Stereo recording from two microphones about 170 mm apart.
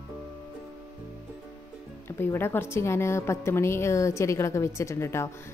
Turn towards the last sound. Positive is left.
turn(degrees=15)  # may be behind; listen again after turning